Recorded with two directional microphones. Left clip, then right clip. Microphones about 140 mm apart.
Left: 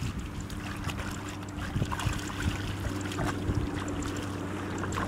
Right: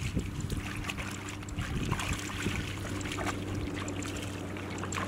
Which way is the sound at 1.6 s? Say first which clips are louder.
Left 1 dB; centre (ahead or behind).